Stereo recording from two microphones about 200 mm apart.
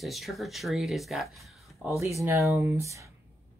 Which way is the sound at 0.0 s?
Centre (ahead or behind).